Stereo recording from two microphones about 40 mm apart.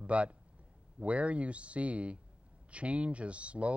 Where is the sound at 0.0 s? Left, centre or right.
Right.